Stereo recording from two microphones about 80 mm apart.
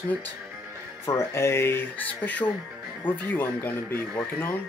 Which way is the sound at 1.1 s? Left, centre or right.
Left.